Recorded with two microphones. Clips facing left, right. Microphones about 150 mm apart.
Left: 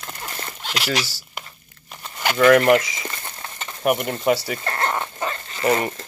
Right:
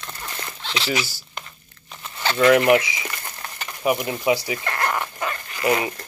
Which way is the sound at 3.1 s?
25° left (ahead or behind).